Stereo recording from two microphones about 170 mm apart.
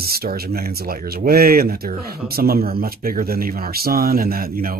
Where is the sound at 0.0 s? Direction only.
65° right (ahead or behind).